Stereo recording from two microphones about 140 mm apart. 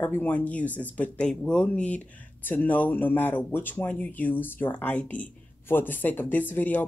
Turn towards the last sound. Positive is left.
turn(degrees=10)  # may be behind; listen again after turning